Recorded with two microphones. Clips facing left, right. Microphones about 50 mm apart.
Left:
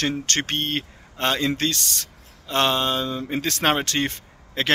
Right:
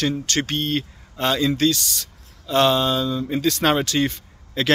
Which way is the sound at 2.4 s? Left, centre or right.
Left.